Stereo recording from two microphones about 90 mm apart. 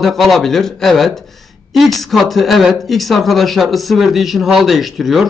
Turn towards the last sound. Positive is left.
turn(degrees=0)  # may be behind; listen again after turning